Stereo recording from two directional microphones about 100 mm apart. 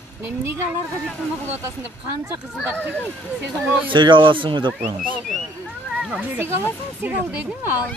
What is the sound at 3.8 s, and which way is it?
Speech, 55° right (ahead or behind).